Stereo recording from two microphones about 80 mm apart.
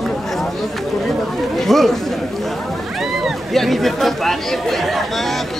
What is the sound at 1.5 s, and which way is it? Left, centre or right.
Speech, centre.